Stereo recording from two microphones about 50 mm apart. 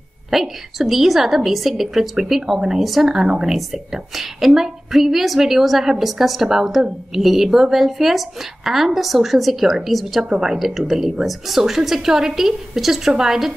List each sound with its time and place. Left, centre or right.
0.3 s a woman's voice: centre